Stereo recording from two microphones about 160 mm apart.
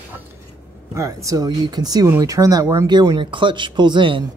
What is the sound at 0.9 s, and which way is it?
Speech, 20° right (ahead or behind).